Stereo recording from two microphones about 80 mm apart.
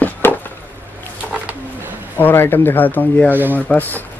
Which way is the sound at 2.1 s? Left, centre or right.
Left.